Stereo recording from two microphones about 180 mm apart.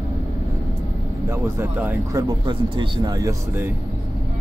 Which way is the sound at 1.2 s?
15° right (ahead or behind).